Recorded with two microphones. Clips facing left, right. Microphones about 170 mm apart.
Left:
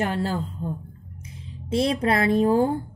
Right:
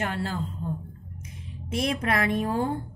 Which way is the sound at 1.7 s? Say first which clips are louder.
Left 5 dB; 30° left (ahead or behind).